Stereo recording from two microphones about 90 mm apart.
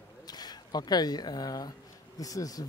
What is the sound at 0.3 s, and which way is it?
Speech, 50° left (ahead or behind).